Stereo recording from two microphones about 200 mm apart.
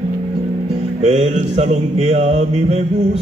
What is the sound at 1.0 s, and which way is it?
Music, 35° right (ahead or behind).